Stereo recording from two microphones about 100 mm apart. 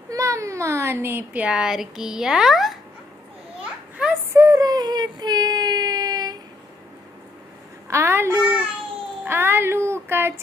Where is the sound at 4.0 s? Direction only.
10° right (ahead or behind).